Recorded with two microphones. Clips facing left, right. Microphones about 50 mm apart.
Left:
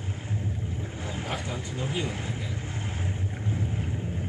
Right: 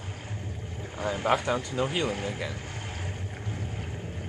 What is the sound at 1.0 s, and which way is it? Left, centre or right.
Speech, right.